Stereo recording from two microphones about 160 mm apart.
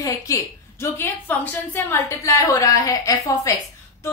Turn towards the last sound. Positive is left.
turn(degrees=20)  # may be behind; listen again after turning